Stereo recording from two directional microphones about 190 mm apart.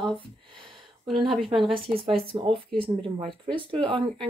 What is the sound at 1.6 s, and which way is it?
Speech, 30° right (ahead or behind).